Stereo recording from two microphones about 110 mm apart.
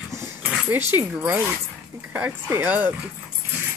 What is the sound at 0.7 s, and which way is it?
Speech, 15° right (ahead or behind).